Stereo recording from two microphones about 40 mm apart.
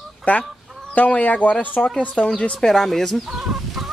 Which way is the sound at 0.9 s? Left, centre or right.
Left.